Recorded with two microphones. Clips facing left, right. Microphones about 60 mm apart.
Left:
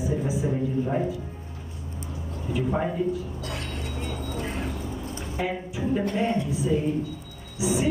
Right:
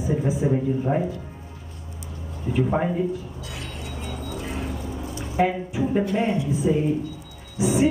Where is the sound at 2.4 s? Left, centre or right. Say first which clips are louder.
Right 4 dB; centre.